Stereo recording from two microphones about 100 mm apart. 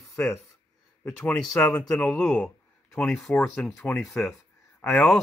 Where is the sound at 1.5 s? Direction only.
10° left (ahead or behind).